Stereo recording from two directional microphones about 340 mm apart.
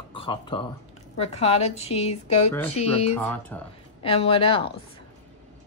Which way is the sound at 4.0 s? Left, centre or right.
Centre.